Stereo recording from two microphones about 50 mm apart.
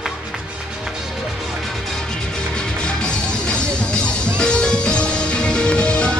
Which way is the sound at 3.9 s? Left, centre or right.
Centre.